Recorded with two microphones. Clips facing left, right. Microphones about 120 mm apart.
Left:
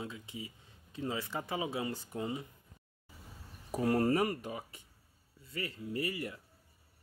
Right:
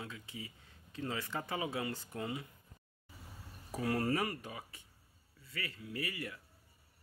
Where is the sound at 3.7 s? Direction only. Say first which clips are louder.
Left 5 dB; 30° left (ahead or behind).